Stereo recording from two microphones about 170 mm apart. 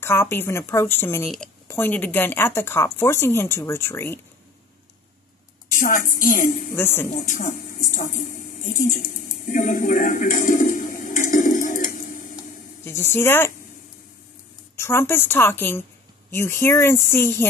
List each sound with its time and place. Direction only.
0.0 s speech: 15° left (ahead or behind)
5.7 s a woman's voice: 55° left (ahead or behind)
6.7 s speech: 15° left (ahead or behind)
7.2 s a sound: 50° left (ahead or behind)
12.8 s speech: 15° left (ahead or behind)
14.8 s speech: 15° left (ahead or behind)